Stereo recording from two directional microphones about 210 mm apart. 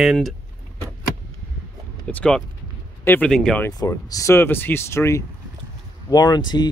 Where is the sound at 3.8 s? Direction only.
15° left (ahead or behind).